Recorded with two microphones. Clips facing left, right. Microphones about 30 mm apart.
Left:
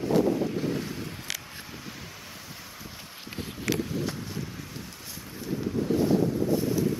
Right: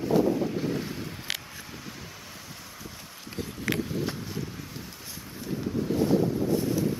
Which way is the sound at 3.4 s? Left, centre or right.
Left.